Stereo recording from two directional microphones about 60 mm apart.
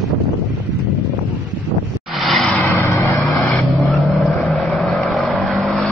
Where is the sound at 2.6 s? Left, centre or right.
Left.